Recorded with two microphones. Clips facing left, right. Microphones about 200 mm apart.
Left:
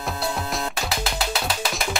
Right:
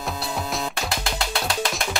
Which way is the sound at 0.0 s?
Centre (ahead or behind).